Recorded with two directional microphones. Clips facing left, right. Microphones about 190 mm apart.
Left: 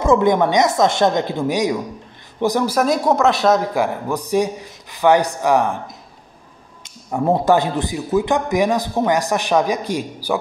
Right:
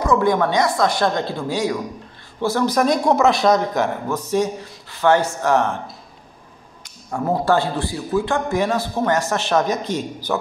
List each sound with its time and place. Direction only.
0.0 s a woman's voice: 25° left (ahead or behind)